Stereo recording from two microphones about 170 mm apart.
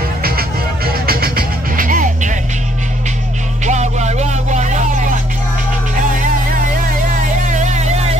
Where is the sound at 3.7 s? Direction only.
40° right (ahead or behind).